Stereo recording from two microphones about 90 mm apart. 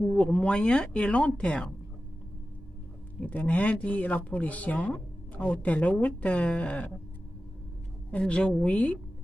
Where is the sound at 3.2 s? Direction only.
15° left (ahead or behind).